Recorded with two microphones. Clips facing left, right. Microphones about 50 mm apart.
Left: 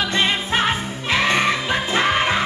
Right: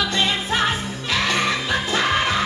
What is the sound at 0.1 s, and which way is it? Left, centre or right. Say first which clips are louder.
Music: left 2 dB; left.